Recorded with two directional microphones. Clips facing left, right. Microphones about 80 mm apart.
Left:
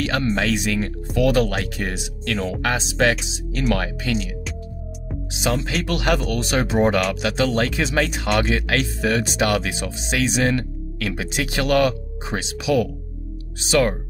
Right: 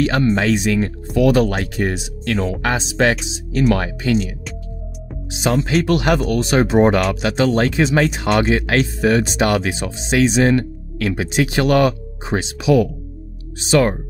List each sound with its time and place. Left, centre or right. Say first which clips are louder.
0.0 s speech: right 5 dB; right
5.3 s speech: right 6 dB; right